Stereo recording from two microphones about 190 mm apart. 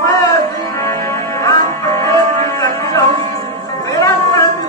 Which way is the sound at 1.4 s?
15° left (ahead or behind).